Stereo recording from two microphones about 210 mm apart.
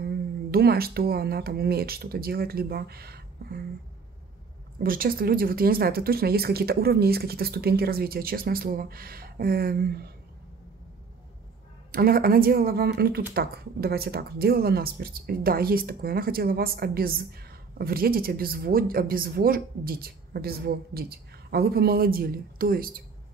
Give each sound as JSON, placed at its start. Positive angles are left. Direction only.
{"t": 0.0, "sound": "speech", "side_deg": -50}
{"t": 4.7, "sound": "speech", "side_deg": -45}
{"t": 11.9, "sound": "speech", "side_deg": -45}